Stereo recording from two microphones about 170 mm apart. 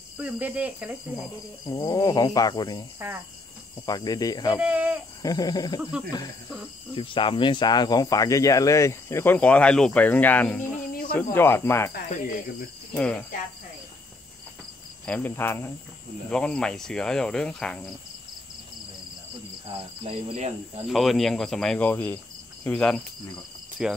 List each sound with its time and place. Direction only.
0.2 s cricket: 10° right (ahead or behind)
1.7 s speech: 20° left (ahead or behind)
3.0 s cricket: 15° right (ahead or behind)
3.8 s speech: 20° left (ahead or behind)
4.6 s cricket: 10° right (ahead or behind)
5.2 s speech: 20° left (ahead or behind)
5.8 s cricket: 5° right (ahead or behind)
7.0 s speech: 30° left (ahead or behind); by 10.7 s 10° left (ahead or behind)
10.9 s cricket: 60° left (ahead or behind)
11.3 s cricket: 15° left (ahead or behind)
12.9 s cricket: 5° left (ahead or behind)
15.0 s cricket: 10° left (ahead or behind)
20.0 s cricket: 35° right (ahead or behind)
20.8 s cricket: centre (ahead or behind)